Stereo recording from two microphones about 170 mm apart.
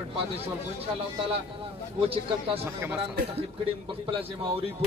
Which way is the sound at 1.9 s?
35° right (ahead or behind).